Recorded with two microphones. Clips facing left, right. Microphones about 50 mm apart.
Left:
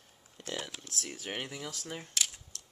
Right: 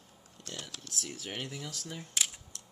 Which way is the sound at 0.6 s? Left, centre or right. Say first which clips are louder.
Left 2 dB; centre.